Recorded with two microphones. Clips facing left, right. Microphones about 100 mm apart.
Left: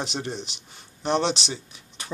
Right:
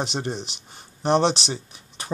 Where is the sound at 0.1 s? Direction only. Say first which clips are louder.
Right 3 dB; 40° right (ahead or behind).